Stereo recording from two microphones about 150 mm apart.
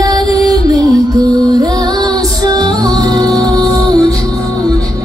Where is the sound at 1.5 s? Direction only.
25° right (ahead or behind).